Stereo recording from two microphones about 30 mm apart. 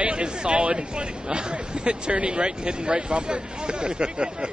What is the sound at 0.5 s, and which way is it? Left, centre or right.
Speech, right.